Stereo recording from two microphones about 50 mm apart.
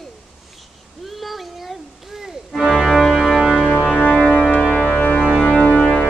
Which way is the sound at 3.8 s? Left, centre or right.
Left.